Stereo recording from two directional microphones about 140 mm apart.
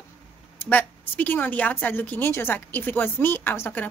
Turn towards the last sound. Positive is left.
turn(degrees=15)  # may be behind; listen again after turning